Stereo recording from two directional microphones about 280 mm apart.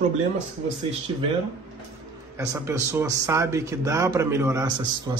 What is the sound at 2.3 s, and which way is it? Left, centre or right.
Speech, centre.